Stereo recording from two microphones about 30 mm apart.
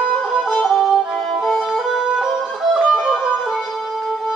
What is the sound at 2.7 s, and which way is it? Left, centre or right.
Music, centre.